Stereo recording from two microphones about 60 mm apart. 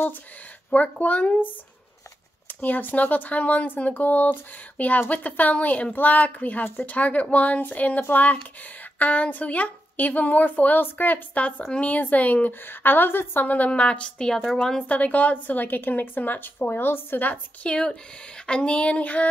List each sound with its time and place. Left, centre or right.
0.7 s a woman's voice: left
2.6 s a woman's voice: left; by 14.9 s centre
14.9 s a woman's voice: left
17.6 s speech: centre